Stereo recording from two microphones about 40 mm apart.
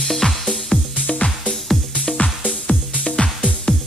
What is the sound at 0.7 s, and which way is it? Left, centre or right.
Music, left.